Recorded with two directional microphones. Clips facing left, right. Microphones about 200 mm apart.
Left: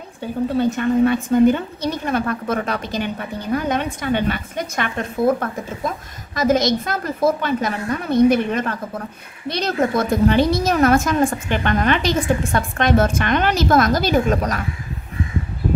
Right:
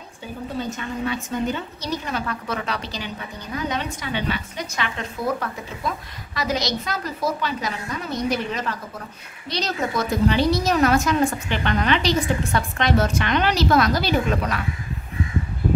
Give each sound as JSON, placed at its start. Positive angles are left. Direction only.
{"t": 0.6, "sound": "a woman's voice", "side_deg": 60}